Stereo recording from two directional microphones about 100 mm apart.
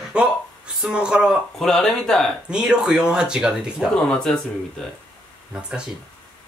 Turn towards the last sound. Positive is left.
turn(degrees=-5)  # may be behind; listen again after turning